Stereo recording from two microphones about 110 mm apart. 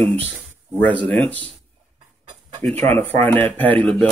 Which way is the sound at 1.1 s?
15° left (ahead or behind).